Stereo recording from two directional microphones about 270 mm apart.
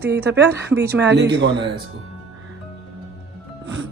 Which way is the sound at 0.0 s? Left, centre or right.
Right.